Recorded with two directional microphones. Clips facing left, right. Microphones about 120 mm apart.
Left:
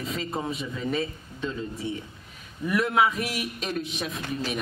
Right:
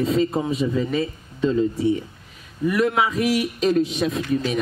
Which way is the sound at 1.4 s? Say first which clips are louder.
Right 12 dB; 35° right (ahead or behind).